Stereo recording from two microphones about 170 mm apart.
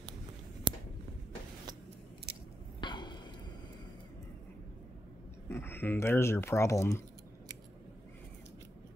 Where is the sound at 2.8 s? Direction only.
25° left (ahead or behind).